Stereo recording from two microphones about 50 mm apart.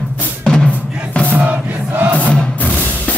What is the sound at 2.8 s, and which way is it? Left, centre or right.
Music, left.